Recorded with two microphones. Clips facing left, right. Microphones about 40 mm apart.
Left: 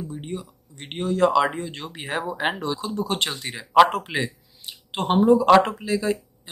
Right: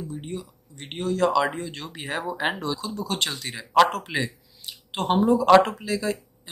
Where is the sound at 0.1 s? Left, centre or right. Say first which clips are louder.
Left 1 dB; centre.